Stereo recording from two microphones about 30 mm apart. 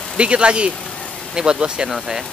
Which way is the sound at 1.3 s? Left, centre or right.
Right.